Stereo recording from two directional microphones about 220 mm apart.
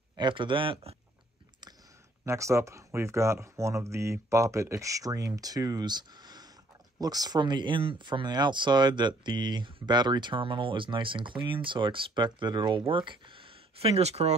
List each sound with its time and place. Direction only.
0.1 s speech: 20° right (ahead or behind)
2.2 s speech: 15° right (ahead or behind); by 14.3 s 30° right (ahead or behind)